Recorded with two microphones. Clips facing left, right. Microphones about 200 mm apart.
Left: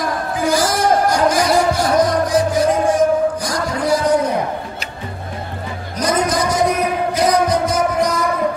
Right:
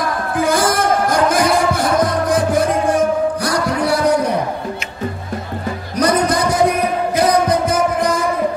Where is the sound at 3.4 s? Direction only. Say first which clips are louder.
Right 3 dB; 65° right (ahead or behind).